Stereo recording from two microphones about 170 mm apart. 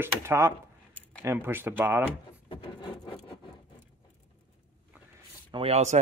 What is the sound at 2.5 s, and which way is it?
Rub, 30° left (ahead or behind).